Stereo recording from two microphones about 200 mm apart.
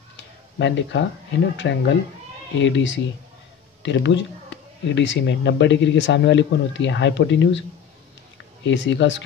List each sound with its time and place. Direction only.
0.6 s speech: 60° left (ahead or behind)
8.6 s speech: 65° left (ahead or behind)